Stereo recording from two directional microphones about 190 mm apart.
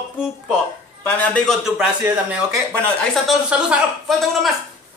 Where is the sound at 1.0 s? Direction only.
5° left (ahead or behind).